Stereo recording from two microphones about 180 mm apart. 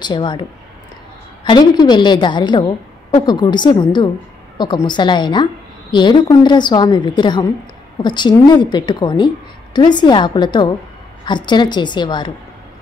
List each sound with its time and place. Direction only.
0.0 s a woman's voice: 25° left (ahead or behind)